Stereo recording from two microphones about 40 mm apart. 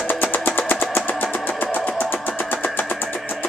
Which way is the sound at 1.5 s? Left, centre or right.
Left.